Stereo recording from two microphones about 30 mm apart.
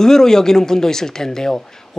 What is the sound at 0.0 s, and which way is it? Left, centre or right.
Speech, centre.